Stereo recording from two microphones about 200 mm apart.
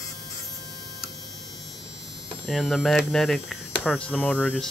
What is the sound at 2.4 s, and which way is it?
Hum, centre (ahead or behind).